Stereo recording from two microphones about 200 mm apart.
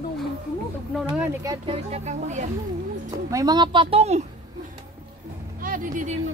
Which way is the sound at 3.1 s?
15° right (ahead or behind).